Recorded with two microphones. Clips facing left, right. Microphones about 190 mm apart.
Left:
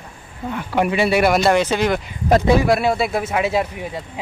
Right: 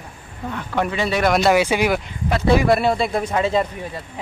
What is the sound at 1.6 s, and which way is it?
Speech, 10° right (ahead or behind).